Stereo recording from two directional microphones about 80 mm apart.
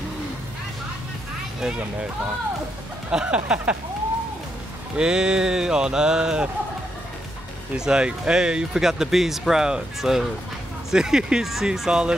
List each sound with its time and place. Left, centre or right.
1.8 s speech: centre
4.9 s speech: centre
7.7 s speech: centre